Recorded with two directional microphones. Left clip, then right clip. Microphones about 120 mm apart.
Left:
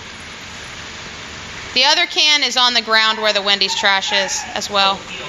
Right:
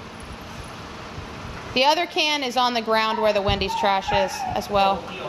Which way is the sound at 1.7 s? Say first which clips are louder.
Left 5 dB; 20° right (ahead or behind).